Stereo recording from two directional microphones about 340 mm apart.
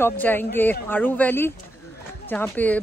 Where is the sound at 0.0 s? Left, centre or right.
Centre.